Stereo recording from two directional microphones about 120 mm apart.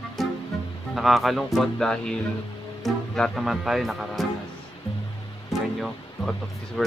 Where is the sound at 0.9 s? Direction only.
Centre (ahead or behind).